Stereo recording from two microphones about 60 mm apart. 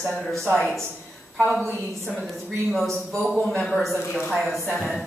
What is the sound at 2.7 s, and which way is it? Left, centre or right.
A woman's voice, centre.